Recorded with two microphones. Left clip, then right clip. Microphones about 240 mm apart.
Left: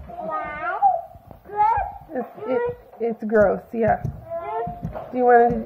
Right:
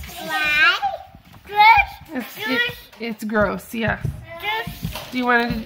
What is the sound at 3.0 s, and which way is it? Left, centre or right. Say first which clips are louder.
Speech: left 3 dB; centre.